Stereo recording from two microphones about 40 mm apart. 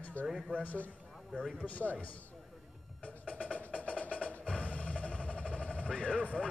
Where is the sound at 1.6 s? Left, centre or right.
Left.